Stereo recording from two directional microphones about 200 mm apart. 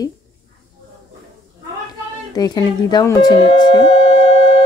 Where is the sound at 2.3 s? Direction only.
20° left (ahead or behind).